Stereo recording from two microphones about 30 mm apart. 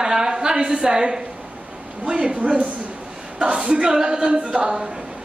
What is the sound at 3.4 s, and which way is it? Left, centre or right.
A woman's voice, right.